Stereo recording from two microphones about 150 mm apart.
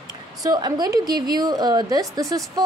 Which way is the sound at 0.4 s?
25° right (ahead or behind).